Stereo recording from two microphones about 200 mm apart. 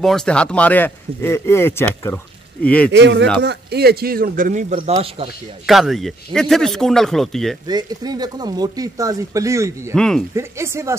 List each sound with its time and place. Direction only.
0.0 s speech: 5° left (ahead or behind)
2.9 s a man's voice: 60° right (ahead or behind); by 4.7 s 40° right (ahead or behind)
4.7 s speech: 30° right (ahead or behind)
5.7 s speech: centre (ahead or behind)
7.6 s speech: 20° right (ahead or behind)
9.9 s speech: 5° left (ahead or behind)
10.3 s speech: 15° right (ahead or behind)